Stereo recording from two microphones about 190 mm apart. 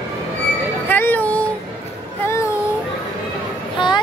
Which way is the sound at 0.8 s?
10° left (ahead or behind).